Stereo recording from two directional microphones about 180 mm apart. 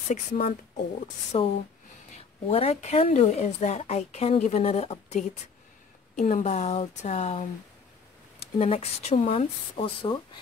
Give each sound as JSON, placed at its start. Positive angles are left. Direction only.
{"t": 0.1, "sound": "speech", "side_deg": 50}
{"t": 1.0, "sound": "speech", "side_deg": 35}